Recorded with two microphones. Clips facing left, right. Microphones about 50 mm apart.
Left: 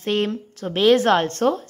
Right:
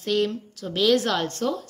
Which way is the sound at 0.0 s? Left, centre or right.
Left.